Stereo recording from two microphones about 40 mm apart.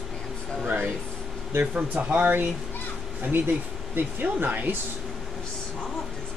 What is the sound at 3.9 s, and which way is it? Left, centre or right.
Speech, right.